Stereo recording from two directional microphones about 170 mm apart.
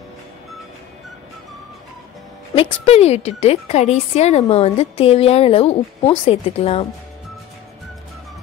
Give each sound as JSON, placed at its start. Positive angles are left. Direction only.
{"t": 2.5, "sound": "a woman's voice", "side_deg": 35}